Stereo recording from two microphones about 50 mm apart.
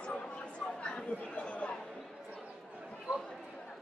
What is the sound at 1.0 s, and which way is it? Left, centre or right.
Chatter, left.